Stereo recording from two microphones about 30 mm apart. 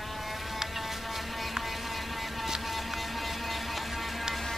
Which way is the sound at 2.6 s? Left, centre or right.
Centre.